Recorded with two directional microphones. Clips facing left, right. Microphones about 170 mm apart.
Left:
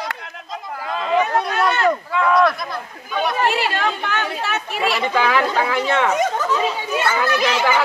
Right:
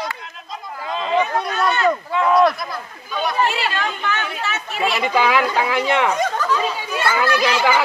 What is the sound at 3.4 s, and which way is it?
Chatter, 60° left (ahead or behind).